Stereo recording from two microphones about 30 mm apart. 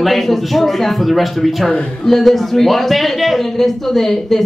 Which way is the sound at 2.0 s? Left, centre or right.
Centre.